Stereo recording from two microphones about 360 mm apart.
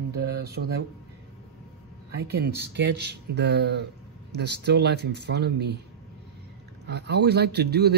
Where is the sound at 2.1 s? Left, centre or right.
Right.